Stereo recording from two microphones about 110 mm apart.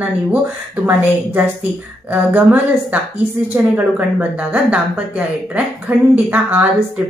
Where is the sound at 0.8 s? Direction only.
15° right (ahead or behind).